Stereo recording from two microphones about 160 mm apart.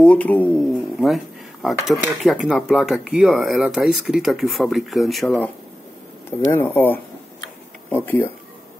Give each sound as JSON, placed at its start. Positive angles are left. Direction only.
{"t": 0.0, "sound": "speech", "side_deg": 10}
{"t": 0.9, "sound": "speech", "side_deg": 0}
{"t": 6.5, "sound": "speech", "side_deg": 15}